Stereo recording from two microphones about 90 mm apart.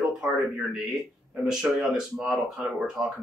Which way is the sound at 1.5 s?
5° right (ahead or behind).